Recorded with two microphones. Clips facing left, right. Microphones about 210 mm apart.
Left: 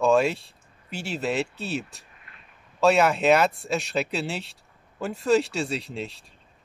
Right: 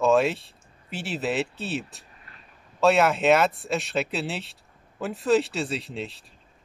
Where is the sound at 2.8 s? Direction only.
Centre (ahead or behind).